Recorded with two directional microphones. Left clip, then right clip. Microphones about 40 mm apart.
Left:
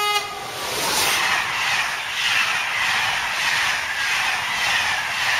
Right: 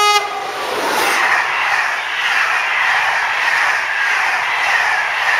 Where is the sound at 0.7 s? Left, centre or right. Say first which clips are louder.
Right 4 dB; left.